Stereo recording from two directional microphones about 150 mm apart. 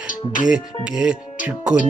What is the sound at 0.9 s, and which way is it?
Speech, 5° right (ahead or behind).